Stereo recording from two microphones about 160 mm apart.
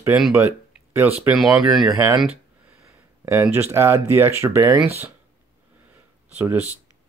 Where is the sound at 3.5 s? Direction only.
15° right (ahead or behind).